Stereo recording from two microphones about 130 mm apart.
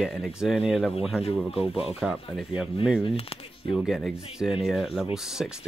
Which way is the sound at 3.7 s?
Centre (ahead or behind).